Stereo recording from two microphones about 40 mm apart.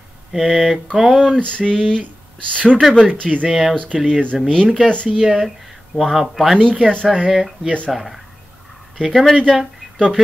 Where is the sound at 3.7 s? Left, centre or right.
Left.